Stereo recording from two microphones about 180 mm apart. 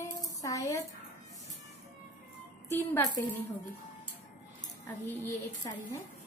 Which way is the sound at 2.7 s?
10° left (ahead or behind).